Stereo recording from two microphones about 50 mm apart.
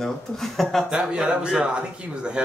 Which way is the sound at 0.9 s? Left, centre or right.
Centre.